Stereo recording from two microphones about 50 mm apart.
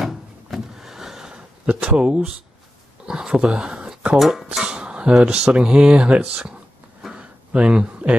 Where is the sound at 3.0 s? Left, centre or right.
Centre.